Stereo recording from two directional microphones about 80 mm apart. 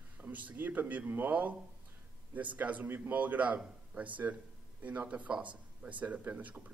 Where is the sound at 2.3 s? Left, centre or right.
Centre.